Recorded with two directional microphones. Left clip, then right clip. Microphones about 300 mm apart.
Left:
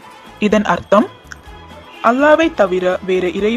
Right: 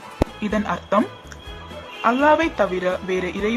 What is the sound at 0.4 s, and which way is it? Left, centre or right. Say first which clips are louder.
Speech: left 10 dB; left.